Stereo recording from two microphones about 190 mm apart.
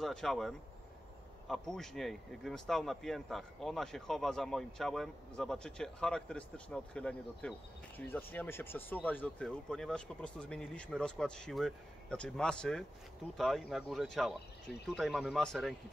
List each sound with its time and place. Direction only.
0.0 s speech: centre (ahead or behind)